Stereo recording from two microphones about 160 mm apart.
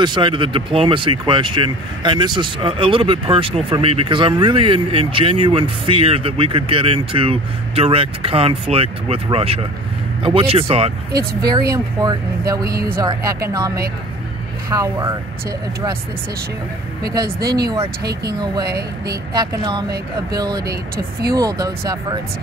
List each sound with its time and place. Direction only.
0.0 s speech: 30° right (ahead or behind)
11.7 s speech: 25° right (ahead or behind)
12.6 s a woman's voice: 70° right (ahead or behind)
13.0 s speech: 20° right (ahead or behind)
17.1 s speech: 25° right (ahead or behind)
18.7 s a woman's voice: 80° right
19.3 s speech: 25° right (ahead or behind)